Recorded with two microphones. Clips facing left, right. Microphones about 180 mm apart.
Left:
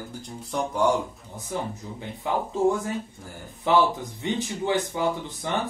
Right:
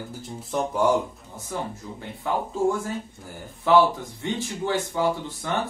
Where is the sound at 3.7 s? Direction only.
20° left (ahead or behind).